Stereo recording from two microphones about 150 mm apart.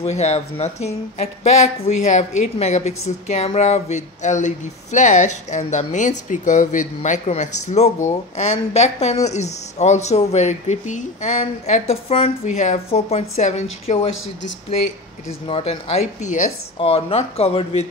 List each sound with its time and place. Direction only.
0.0 s speech: 45° left (ahead or behind)
15.4 s speech: 40° left (ahead or behind)
16.7 s speech: 40° left (ahead or behind)